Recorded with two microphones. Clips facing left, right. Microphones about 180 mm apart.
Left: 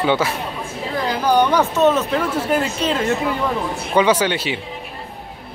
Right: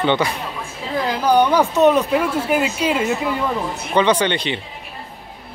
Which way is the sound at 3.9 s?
5° left (ahead or behind).